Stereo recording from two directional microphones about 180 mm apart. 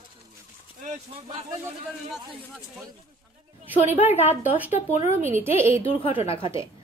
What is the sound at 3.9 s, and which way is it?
Speech, 35° left (ahead or behind).